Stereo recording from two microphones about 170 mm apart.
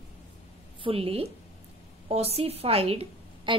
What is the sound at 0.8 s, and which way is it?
A woman's voice, 35° right (ahead or behind).